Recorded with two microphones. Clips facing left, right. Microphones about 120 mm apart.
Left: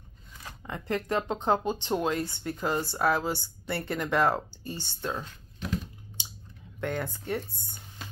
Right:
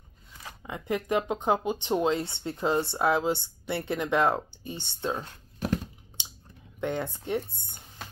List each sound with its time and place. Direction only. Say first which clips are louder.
0.4 s speech: even; 10° right (ahead or behind)
6.8 s speech: right 2 dB; 20° right (ahead or behind)